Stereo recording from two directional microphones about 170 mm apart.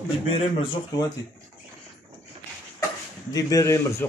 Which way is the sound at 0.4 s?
25° left (ahead or behind).